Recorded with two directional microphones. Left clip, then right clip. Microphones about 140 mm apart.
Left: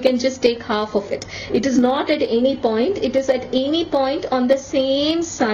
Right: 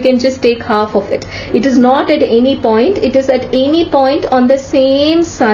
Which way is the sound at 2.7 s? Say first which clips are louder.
Right 9 dB; 25° left (ahead or behind).